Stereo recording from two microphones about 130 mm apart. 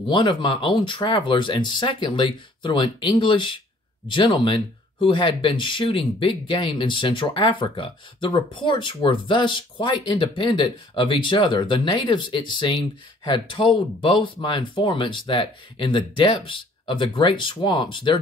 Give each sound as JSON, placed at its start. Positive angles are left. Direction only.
{"t": 0.0, "sound": "speech", "side_deg": 40}